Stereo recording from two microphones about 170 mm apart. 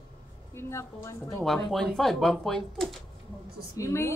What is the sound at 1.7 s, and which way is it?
Speech, centre (ahead or behind).